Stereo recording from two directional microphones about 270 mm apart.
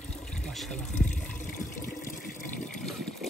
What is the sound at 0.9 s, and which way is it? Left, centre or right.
Water, left.